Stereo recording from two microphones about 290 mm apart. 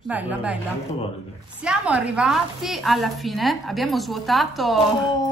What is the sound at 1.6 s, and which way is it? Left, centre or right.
A woman's voice, centre.